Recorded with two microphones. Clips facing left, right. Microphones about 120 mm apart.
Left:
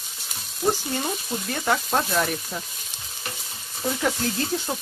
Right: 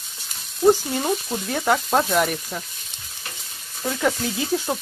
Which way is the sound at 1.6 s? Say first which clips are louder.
Right 4 dB; 15° right (ahead or behind).